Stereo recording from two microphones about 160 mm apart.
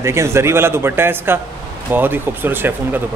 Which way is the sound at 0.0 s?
15° right (ahead or behind).